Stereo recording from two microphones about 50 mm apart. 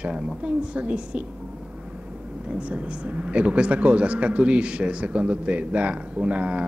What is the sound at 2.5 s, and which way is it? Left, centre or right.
A man's voice, right.